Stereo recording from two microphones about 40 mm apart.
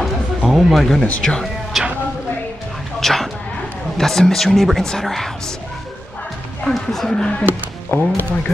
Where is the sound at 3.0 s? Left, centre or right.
Centre.